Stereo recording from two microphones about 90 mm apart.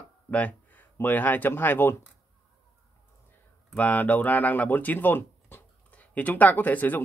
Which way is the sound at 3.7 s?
20° left (ahead or behind).